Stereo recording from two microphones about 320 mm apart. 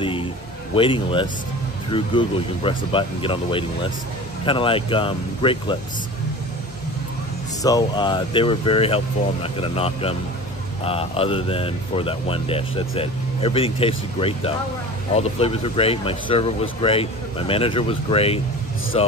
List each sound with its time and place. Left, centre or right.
0.0 s a sound: centre
0.7 s speech: centre
7.6 s speech: centre